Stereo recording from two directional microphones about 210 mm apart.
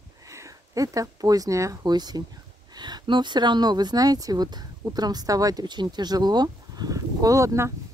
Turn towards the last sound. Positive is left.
turn(degrees=-15)  # may be behind; listen again after turning